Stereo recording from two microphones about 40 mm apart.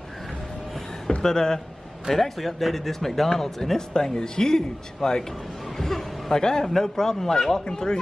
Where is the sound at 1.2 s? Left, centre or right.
Centre.